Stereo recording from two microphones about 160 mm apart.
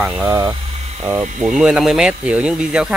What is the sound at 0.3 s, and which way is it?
Speech, 25° right (ahead or behind).